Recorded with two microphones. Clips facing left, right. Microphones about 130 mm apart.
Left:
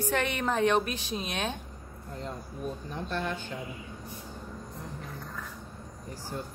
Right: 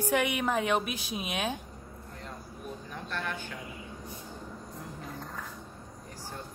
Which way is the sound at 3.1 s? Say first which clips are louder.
Left 3 dB; 25° left (ahead or behind).